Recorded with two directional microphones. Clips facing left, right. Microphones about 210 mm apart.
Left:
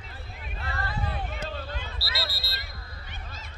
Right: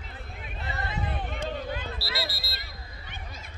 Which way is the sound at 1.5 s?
15° right (ahead or behind).